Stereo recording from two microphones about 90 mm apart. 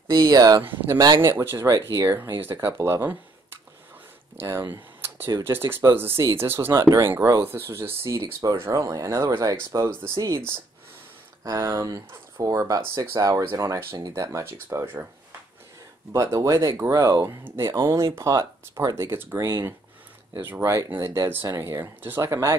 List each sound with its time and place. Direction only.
0.1 s speech: 45° right (ahead or behind)
1.2 s speech: 25° right (ahead or behind)
1.7 s speech: 40° right (ahead or behind)
8.5 s speech: 30° right (ahead or behind)
11.4 s speech: 35° right (ahead or behind)
16.1 s speech: 35° right (ahead or behind)
17.4 s speech: 20° right (ahead or behind)
17.8 s speech: 35° right (ahead or behind)